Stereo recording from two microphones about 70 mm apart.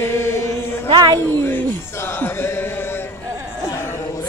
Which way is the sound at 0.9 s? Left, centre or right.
Right.